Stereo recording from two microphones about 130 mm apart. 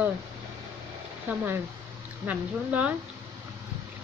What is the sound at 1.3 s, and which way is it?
Speech, 15° right (ahead or behind).